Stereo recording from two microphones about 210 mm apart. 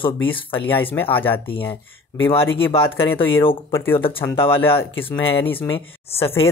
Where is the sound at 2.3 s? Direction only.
25° left (ahead or behind).